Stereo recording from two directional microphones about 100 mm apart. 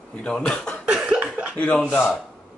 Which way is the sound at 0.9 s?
10° right (ahead or behind).